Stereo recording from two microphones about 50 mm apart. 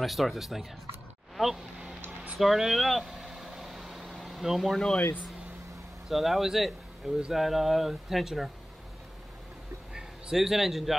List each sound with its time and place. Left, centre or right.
0.0 s speech: centre
1.3 s a sound: centre
2.3 s vehicle: centre
6.0 s speech: centre
10.3 s speech: centre